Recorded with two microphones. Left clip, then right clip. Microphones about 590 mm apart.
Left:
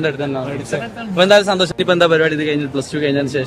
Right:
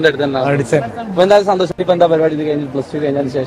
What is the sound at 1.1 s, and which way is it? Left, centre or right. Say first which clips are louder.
Speech: right 1 dB; centre.